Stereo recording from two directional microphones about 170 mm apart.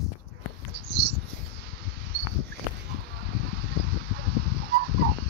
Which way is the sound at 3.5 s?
75° right (ahead or behind).